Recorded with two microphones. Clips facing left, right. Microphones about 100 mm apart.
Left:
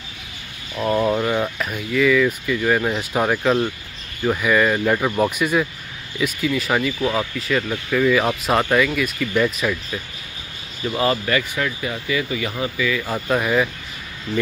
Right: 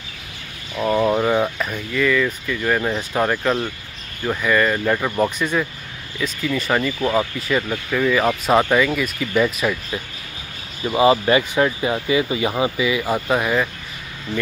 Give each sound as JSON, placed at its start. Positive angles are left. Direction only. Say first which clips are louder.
{"t": 0.7, "sound": "speech", "louder": "right 1 dB", "side_deg": -5}
{"t": 1.6, "sound": "speech", "louder": "left 2 dB", "side_deg": 0}
{"t": 10.8, "sound": "speech", "louder": "right 5 dB", "side_deg": -15}
{"t": 13.4, "sound": "speech", "louder": "left 1 dB", "side_deg": -5}